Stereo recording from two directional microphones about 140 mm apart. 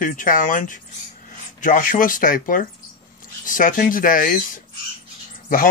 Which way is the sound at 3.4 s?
75° left (ahead or behind).